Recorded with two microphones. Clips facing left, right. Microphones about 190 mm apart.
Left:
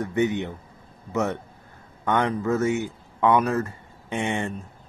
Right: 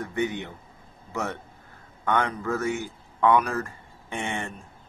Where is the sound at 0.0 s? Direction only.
20° left (ahead or behind).